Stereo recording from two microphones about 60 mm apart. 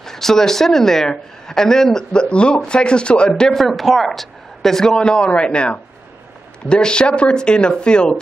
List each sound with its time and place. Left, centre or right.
0.0 s a man's voice: centre